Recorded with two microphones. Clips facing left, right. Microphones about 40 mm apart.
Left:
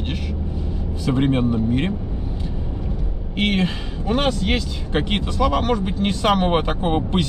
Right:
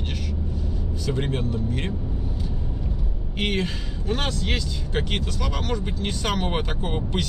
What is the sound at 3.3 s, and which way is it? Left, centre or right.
Speech, centre.